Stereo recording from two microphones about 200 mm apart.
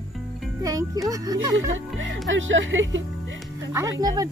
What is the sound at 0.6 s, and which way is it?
Music, 20° right (ahead or behind).